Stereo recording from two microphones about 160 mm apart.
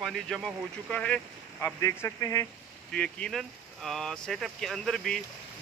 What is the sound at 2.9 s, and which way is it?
Speech, 5° left (ahead or behind).